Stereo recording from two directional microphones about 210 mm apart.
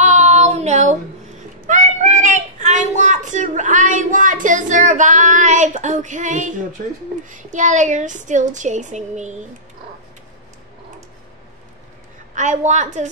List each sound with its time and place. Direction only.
0.0 s child singing: 35° right (ahead or behind)
1.7 s a sound: 35° right (ahead or behind)
7.2 s speech: 35° right (ahead or behind)
12.4 s speech: 35° right (ahead or behind)